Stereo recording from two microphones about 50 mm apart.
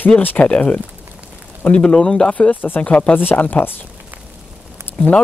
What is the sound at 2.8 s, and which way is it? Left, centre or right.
Speech, left.